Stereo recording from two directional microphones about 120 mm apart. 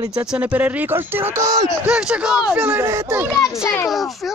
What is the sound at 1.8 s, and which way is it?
A child's voice, 5° right (ahead or behind).